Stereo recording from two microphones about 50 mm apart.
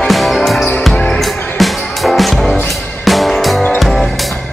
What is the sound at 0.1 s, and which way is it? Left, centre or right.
Music, centre.